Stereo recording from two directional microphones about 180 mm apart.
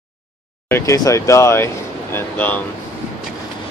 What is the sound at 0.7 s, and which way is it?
Speech, 15° left (ahead or behind).